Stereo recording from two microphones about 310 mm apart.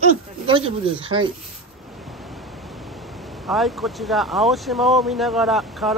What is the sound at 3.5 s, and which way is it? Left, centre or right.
Speech, centre.